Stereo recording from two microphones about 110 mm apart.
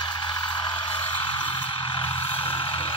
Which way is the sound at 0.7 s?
45° left (ahead or behind).